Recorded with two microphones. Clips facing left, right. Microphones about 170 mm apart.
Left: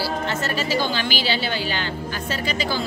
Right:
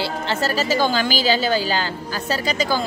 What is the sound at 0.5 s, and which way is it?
A woman's voice, 40° right (ahead or behind).